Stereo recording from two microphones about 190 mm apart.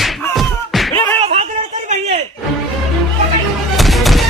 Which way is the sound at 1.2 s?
35° right (ahead or behind).